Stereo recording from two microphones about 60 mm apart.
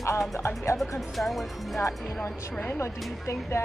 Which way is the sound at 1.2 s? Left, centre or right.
Centre.